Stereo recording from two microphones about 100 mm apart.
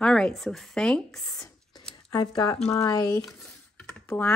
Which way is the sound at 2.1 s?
50° left (ahead or behind).